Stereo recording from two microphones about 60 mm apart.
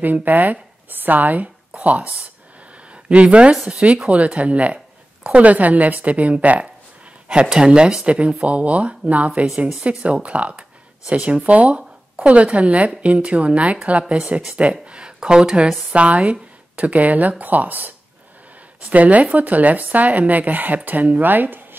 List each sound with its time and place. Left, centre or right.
0.0 s speech: right